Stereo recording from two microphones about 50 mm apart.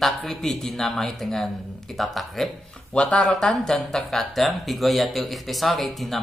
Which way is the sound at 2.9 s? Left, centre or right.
Left.